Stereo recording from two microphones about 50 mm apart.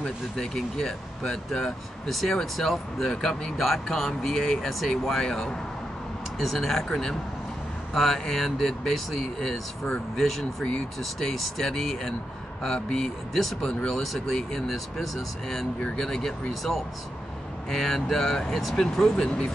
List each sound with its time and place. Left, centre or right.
0.4 s speech: centre
7.9 s speech: centre
13.7 s speech: centre
18.8 s speech: centre